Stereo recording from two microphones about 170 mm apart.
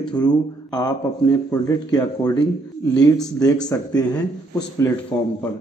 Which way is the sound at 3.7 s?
20° left (ahead or behind).